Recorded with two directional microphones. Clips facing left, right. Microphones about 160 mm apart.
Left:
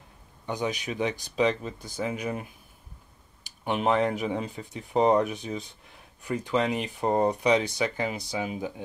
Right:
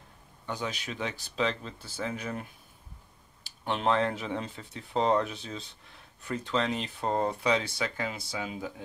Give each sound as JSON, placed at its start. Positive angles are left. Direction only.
{"t": 0.5, "sound": "speech", "side_deg": 15}
{"t": 3.4, "sound": "speech", "side_deg": 15}